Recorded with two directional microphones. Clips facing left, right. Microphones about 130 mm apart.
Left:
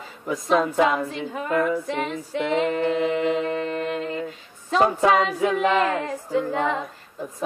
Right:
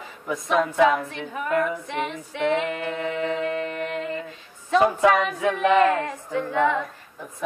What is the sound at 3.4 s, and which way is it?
Music, 35° left (ahead or behind).